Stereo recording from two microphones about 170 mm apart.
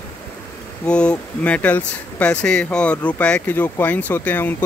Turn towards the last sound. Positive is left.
turn(degrees=10)  # may be behind; listen again after turning